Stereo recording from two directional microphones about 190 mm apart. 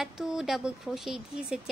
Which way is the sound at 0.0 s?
Centre (ahead or behind).